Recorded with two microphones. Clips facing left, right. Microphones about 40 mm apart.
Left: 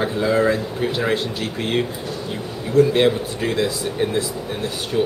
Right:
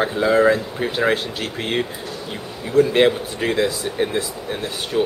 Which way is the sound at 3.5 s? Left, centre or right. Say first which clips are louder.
Right 2 dB; centre.